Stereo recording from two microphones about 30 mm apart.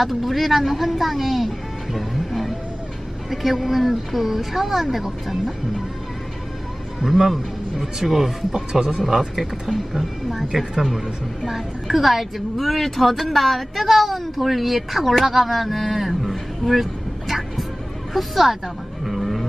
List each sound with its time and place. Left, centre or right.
0.0 s speech: centre
2.0 s music: centre
3.3 s a woman's voice: centre
7.0 s a woman's voice: centre
8.5 s speech: centre
9.3 s speech: centre
18.1 s speech: centre